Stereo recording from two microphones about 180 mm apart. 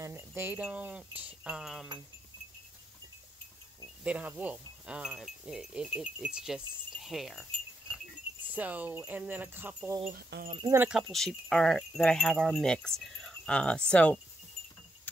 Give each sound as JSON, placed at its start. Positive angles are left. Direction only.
{"t": 0.0, "sound": "speech", "side_deg": -15}
{"t": 4.0, "sound": "speech", "side_deg": -5}
{"t": 8.5, "sound": "speech", "side_deg": -10}
{"t": 10.1, "sound": "speech", "side_deg": -55}
{"t": 10.6, "sound": "speech", "side_deg": -15}
{"t": 10.9, "sound": "speech", "side_deg": 0}